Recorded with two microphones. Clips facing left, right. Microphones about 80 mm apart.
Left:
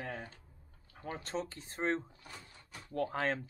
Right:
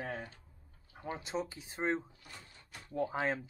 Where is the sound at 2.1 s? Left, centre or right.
Left.